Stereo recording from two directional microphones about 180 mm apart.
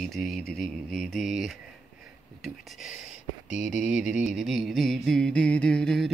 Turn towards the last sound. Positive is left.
turn(degrees=5)  # may be behind; listen again after turning